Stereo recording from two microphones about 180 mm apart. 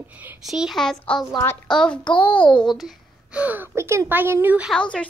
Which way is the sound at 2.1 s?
25° left (ahead or behind).